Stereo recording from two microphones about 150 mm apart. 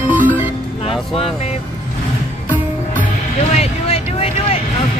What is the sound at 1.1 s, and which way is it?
Music, 40° left (ahead or behind).